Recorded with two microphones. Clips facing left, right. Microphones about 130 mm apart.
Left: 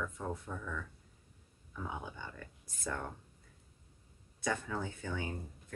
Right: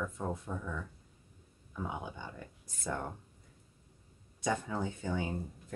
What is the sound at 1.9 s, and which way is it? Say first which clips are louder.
Speech: even; 20° right (ahead or behind).